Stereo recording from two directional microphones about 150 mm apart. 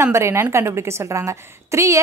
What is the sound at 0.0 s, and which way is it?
A woman's voice, 20° right (ahead or behind).